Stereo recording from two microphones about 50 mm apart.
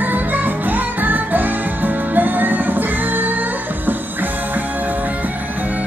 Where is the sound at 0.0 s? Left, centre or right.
Right.